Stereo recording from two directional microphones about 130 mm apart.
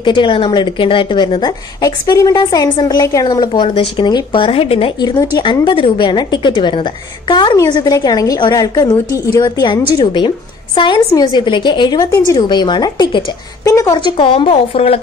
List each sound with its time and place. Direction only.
0.0 s a woman's voice: 40° left (ahead or behind)
5.0 s a woman's voice: 30° left (ahead or behind); by 15.0 s 50° left (ahead or behind)